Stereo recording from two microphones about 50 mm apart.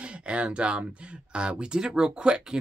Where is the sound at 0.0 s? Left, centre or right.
Right.